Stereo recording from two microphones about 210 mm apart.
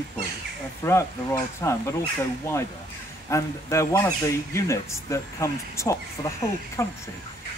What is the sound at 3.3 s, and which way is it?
Speech, 15° left (ahead or behind).